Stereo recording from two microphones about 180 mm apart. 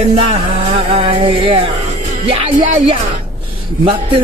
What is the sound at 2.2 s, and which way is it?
A man's voice, 35° right (ahead or behind).